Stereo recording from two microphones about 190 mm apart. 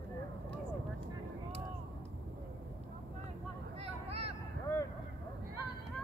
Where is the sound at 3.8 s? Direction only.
30° right (ahead or behind).